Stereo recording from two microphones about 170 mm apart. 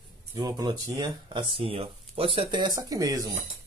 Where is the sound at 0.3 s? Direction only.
20° right (ahead or behind).